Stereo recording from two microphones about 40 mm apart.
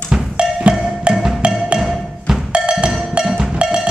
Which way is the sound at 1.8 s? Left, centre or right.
Centre.